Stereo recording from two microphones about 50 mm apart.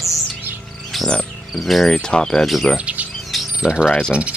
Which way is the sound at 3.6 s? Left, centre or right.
Centre.